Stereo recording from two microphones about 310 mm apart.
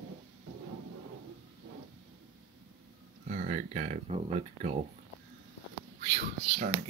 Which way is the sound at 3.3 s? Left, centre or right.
Right.